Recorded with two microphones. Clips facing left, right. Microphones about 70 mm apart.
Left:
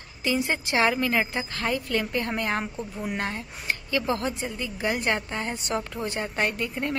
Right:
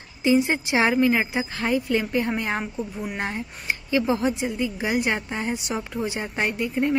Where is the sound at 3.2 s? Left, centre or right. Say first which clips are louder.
Right 2 dB; centre.